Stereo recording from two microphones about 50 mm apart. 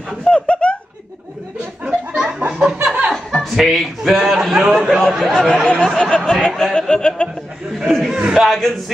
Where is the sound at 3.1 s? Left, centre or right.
Centre.